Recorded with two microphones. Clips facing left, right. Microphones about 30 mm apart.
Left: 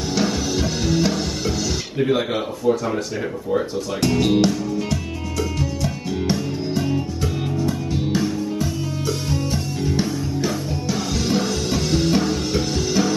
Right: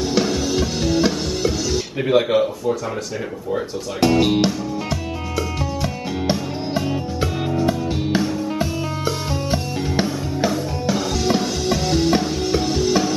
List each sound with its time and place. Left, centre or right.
0.2 s music: centre
4.0 s music: centre
10.5 s music: centre